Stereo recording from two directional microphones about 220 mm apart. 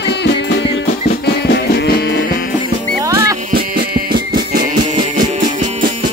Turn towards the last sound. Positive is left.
turn(degrees=-45)  # may be behind; listen again after turning